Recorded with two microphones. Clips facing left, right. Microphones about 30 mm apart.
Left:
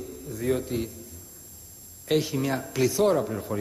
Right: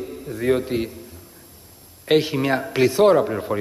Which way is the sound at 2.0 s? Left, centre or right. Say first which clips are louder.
Right 7 dB; right.